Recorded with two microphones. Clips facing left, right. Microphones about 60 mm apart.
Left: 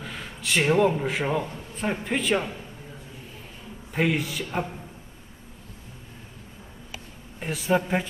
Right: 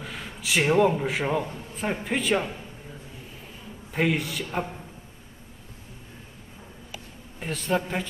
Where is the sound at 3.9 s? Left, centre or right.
Centre.